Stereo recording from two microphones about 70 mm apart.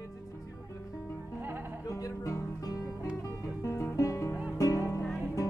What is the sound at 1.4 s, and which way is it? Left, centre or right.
Music, right.